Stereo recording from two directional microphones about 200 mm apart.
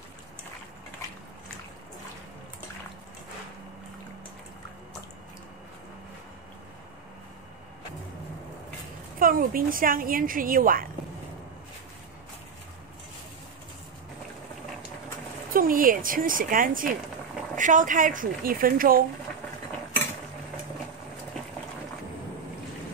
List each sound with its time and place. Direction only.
9.2 s a woman's voice: 45° right (ahead or behind)
15.5 s a woman's voice: 45° right (ahead or behind)